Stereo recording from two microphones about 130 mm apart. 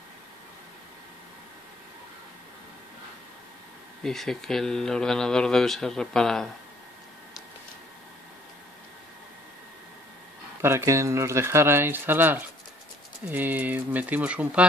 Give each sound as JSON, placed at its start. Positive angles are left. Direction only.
{"t": 4.0, "sound": "speech", "side_deg": 0}
{"t": 10.6, "sound": "speech", "side_deg": -20}